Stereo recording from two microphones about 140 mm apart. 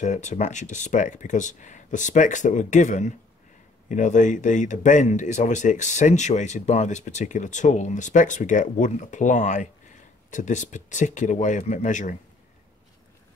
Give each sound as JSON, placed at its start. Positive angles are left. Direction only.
{"t": 0.0, "sound": "speech", "side_deg": 60}